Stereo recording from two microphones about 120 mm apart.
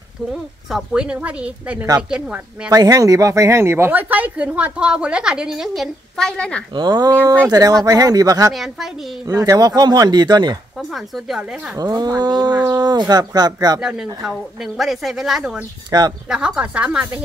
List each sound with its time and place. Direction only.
0.3 s speech: 5° right (ahead or behind)
2.7 s speech: 30° right (ahead or behind); by 6.6 s 10° left (ahead or behind)
6.7 s speech: 35° right (ahead or behind)
8.5 s a woman's voice: 5° right (ahead or behind)
9.5 s speech: 30° right (ahead or behind)
10.8 s a woman's voice: centre (ahead or behind)
11.8 s speech: 30° right (ahead or behind)
13.7 s a woman's voice: 5° right (ahead or behind)
15.9 s speech: 35° right (ahead or behind)
16.3 s speech: 5° right (ahead or behind)